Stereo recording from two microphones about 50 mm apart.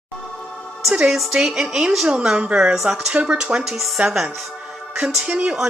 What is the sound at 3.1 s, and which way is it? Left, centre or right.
Speech, right.